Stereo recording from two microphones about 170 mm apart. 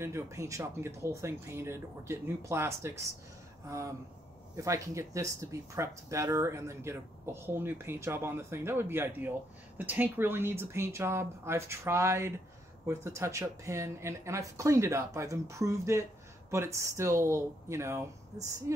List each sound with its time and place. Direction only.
0.0 s speech: 15° right (ahead or behind)